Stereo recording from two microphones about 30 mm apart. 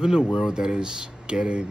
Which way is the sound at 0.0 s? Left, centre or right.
Right.